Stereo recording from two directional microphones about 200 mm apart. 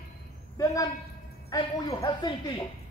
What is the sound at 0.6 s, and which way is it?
Speech, 15° left (ahead or behind).